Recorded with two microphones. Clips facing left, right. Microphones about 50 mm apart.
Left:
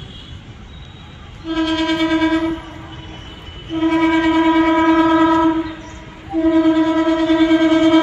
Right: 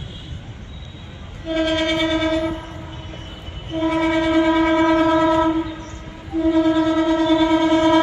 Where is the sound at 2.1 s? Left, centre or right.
Left.